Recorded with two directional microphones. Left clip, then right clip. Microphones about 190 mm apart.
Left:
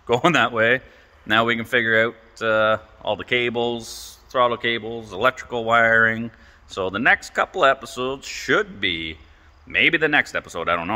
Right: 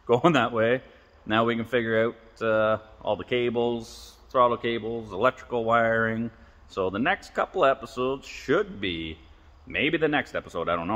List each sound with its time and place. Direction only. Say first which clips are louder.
0.1 s a man's voice: left 4 dB; 5° left (ahead or behind)